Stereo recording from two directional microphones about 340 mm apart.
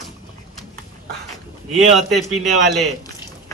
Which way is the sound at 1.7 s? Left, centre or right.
Centre.